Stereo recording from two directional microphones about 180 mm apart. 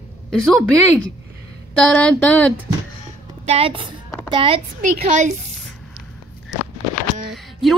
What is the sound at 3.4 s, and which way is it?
A woman's voice, 30° right (ahead or behind).